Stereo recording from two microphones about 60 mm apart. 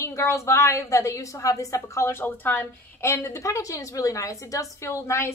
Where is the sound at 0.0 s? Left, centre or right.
Left.